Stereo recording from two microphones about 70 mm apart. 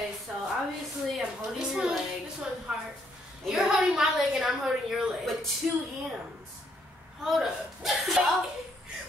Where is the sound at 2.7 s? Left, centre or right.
Right.